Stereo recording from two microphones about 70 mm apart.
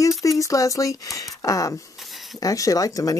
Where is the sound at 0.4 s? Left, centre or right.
Left.